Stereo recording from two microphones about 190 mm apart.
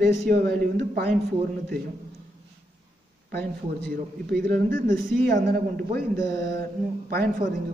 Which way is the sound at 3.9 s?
50° right (ahead or behind).